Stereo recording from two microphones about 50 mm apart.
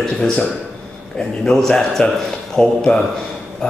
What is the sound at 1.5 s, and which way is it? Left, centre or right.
A man's voice, centre.